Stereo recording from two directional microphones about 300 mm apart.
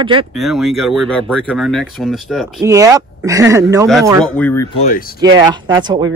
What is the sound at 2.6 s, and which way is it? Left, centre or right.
Speech, centre.